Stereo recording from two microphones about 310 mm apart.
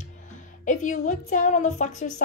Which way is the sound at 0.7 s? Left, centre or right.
Left.